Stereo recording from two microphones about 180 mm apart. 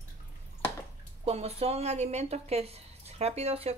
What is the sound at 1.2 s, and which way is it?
Speech, 35° right (ahead or behind).